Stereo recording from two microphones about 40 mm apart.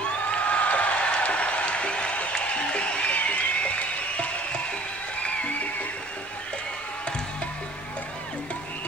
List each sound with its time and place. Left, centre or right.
0.0 s a sound: left
3.2 s music: left
5.2 s music: left